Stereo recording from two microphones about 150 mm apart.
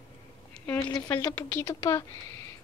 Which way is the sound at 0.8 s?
30° left (ahead or behind).